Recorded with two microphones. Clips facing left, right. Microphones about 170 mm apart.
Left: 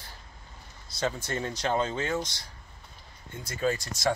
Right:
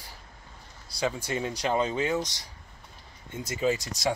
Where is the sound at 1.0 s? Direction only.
10° right (ahead or behind).